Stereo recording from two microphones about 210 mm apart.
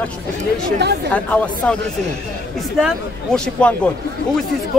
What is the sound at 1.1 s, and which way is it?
Speech, 5° left (ahead or behind).